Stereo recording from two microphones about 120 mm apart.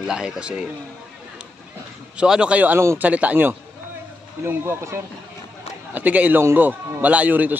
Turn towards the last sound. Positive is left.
turn(degrees=-15)  # may be behind; listen again after turning